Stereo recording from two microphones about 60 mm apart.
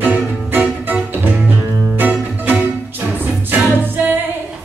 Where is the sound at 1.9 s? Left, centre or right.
Right.